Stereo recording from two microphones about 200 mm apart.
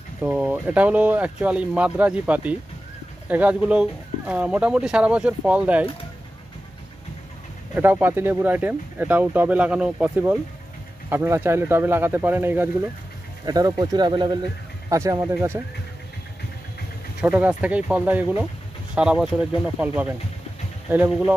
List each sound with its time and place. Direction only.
0.2 s speech: 5° right (ahead or behind)
7.7 s speech: 10° right (ahead or behind)
17.2 s speech: 5° right (ahead or behind)